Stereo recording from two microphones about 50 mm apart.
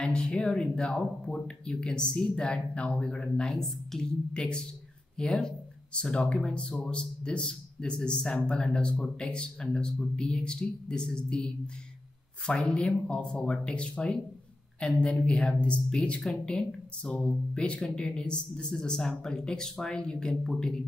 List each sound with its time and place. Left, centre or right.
0.0 s speech: centre
3.4 s a woman's voice: centre
4.0 s speech: centre
12.4 s speech: centre